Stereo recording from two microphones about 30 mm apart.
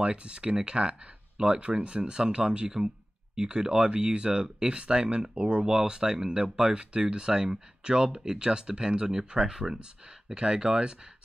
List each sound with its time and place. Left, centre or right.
0.0 s speech: right
5.3 s speech: right
5.7 s speech: right